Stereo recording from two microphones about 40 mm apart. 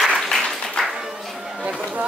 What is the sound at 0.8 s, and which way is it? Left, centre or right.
Music, centre.